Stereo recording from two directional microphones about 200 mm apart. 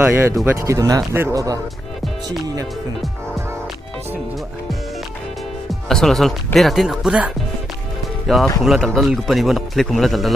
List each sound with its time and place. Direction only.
0.0 s speech: 10° right (ahead or behind)
5.7 s speech: centre (ahead or behind)